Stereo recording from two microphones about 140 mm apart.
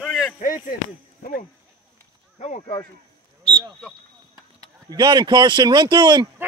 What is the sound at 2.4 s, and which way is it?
Speech, 55° left (ahead or behind).